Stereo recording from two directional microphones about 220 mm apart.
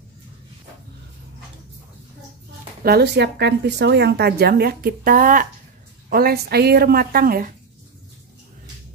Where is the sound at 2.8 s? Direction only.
50° right (ahead or behind).